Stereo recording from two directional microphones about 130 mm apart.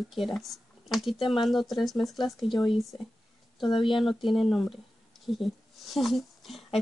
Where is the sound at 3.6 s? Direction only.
40° left (ahead or behind).